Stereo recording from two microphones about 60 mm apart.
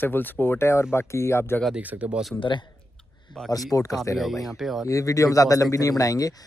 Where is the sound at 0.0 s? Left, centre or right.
Left.